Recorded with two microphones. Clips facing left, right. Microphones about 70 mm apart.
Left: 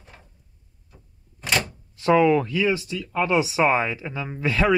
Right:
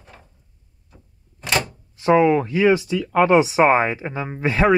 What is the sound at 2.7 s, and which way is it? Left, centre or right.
Speech, right.